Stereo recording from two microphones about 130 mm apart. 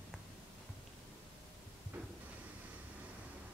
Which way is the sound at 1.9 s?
15° right (ahead or behind).